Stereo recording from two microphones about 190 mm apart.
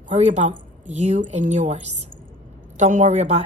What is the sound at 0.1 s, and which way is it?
A woman's voice, 35° right (ahead or behind).